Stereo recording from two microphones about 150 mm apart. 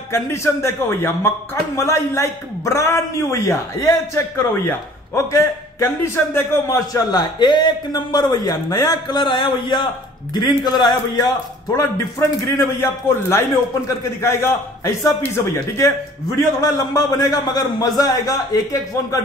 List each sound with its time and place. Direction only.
0.1 s a man's voice: 20° left (ahead or behind)